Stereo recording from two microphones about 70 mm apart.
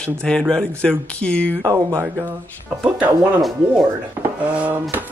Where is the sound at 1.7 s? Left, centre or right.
Right.